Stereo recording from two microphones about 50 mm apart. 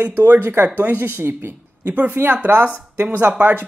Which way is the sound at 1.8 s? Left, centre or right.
Right.